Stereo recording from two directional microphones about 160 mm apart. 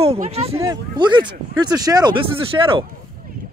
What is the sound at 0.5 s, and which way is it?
Speech, 25° right (ahead or behind).